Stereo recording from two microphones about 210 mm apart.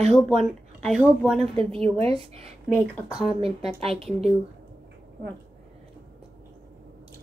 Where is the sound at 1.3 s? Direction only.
25° right (ahead or behind).